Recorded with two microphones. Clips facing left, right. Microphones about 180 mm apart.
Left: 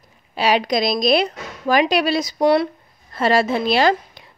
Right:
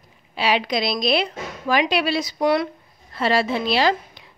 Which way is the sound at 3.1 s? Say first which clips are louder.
Left 3 dB; 45° left (ahead or behind).